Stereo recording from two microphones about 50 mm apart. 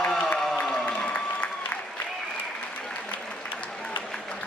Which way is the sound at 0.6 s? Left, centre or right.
Left.